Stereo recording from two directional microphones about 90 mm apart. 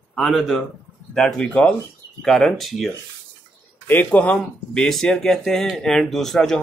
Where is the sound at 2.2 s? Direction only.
5° left (ahead or behind).